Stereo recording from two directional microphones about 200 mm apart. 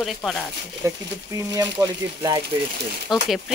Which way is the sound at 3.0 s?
Centre (ahead or behind).